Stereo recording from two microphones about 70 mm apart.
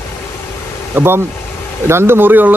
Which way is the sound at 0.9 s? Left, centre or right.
Right.